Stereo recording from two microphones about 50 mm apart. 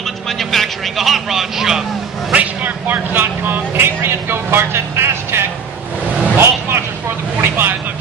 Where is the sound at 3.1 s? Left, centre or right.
Right.